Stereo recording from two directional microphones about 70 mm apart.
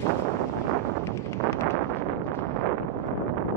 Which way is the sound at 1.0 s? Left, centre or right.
Left.